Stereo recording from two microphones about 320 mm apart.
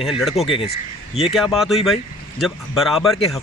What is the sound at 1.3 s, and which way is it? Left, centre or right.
Speech, centre.